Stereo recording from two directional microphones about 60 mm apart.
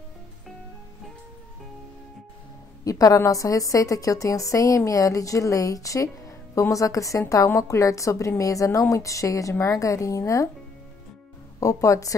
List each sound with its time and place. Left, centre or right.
2.8 s a woman's voice: left
11.6 s a woman's voice: left